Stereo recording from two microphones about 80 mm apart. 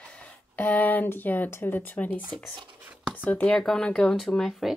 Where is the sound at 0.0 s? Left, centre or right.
Centre.